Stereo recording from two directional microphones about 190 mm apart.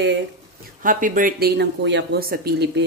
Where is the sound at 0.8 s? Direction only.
45° right (ahead or behind); by 2.9 s 65° right (ahead or behind).